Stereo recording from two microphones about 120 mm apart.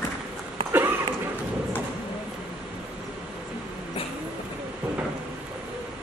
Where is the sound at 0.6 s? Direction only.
45° right (ahead or behind).